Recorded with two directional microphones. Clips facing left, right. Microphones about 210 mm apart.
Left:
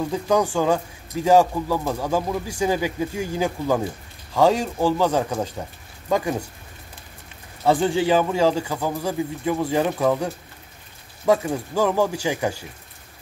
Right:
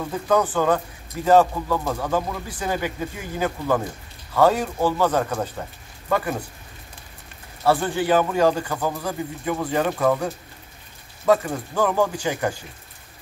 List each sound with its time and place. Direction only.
0.3 s a man's voice: 10° left (ahead or behind)
7.6 s a man's voice: 15° left (ahead or behind)